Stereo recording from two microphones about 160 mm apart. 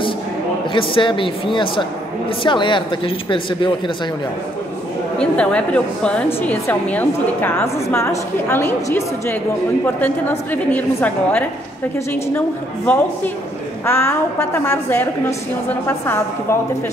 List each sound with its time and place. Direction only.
0.7 s speech: 30° left (ahead or behind)
5.2 s a woman's voice: 5° left (ahead or behind)
12.8 s a woman's voice: 10° left (ahead or behind)